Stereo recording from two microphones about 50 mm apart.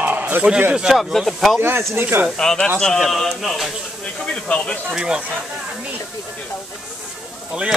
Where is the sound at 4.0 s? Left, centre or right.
Left.